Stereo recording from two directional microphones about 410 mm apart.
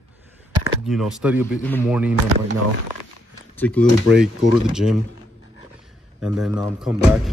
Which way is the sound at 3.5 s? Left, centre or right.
Centre.